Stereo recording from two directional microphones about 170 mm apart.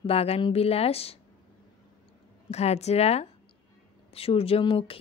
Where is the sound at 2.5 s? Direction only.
40° left (ahead or behind).